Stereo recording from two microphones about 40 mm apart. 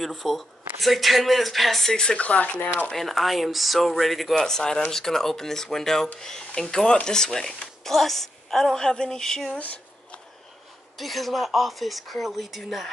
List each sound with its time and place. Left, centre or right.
0.0 s speech: centre
1.9 s a woman's voice: centre
2.1 s speech: left
2.9 s speech: centre
4.4 s a woman's voice: centre
9.6 s a sound: left
11.0 s speech: centre